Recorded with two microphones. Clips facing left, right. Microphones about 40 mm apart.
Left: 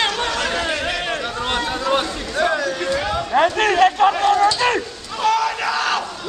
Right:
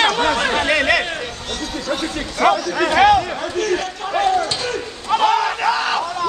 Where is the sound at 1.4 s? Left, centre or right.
Left.